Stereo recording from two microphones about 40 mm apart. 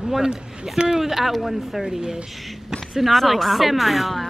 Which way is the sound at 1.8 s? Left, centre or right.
Centre.